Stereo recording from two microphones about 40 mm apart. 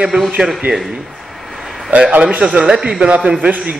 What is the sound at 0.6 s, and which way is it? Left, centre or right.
Speech, right.